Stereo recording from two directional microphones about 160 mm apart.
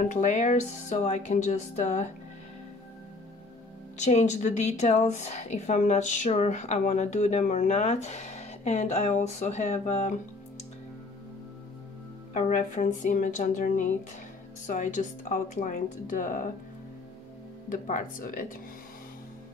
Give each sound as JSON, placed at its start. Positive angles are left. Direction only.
{"t": 0.0, "sound": "a woman's voice", "side_deg": 50}
{"t": 4.0, "sound": "a woman's voice", "side_deg": 50}
{"t": 12.4, "sound": "a woman's voice", "side_deg": 50}
{"t": 17.6, "sound": "speech", "side_deg": 55}